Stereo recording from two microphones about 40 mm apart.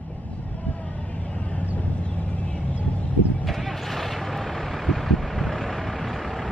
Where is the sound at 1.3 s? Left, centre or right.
Left.